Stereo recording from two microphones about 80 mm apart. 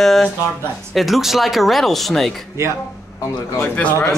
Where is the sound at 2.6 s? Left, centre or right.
Right.